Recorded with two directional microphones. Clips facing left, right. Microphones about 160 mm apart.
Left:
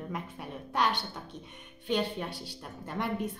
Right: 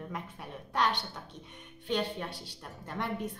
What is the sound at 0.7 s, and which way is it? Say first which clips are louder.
A woman's voice: left 1 dB; 10° left (ahead or behind).